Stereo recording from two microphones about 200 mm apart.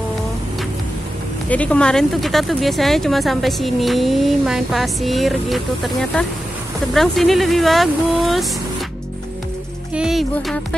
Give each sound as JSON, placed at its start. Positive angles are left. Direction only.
{"t": 1.5, "sound": "speech", "side_deg": 5}
{"t": 9.9, "sound": "speech", "side_deg": 0}